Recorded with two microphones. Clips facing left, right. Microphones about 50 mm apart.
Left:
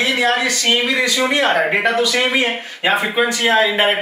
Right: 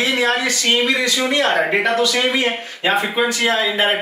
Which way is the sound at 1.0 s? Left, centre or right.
Left.